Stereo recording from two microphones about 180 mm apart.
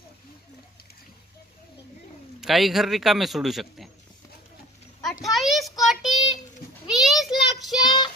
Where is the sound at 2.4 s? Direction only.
Centre (ahead or behind).